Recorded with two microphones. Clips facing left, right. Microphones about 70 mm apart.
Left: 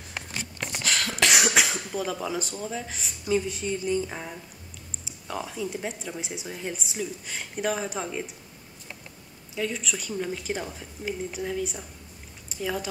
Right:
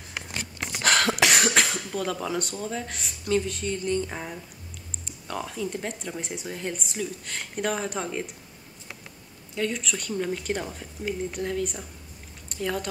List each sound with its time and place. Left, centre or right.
0.8 s cough: right
1.2 s speech: centre
4.1 s speech: centre
9.6 s speech: centre